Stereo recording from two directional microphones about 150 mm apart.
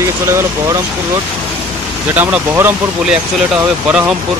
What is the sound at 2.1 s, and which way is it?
Speech, 10° right (ahead or behind).